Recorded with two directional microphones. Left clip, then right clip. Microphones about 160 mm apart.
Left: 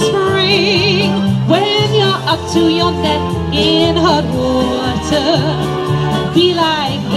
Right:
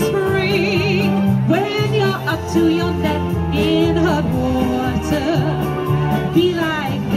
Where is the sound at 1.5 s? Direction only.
20° right (ahead or behind).